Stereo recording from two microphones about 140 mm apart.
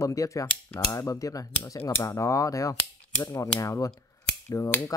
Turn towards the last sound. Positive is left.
turn(degrees=20)  # may be behind; listen again after turning